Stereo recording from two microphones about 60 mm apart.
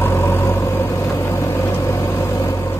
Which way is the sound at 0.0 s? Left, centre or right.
Left.